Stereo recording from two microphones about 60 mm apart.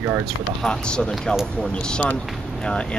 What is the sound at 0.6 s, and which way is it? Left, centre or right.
Speech, centre.